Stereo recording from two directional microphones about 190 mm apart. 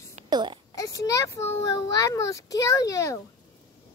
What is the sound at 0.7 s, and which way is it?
A child's voice, 20° left (ahead or behind).